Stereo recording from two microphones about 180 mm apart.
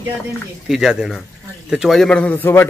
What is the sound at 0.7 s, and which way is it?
A man's voice, 5° right (ahead or behind).